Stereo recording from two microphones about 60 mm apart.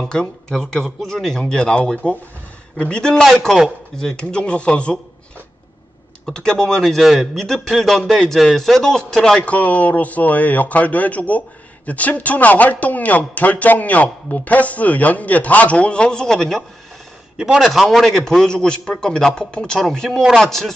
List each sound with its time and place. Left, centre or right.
0.0 s speech: centre
6.2 s speech: centre
9.4 s speech: left; by 16.6 s centre
17.4 s a man's voice: centre
17.7 s speech: centre